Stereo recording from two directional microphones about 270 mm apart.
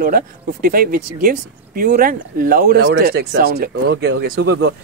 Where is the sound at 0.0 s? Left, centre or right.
Right.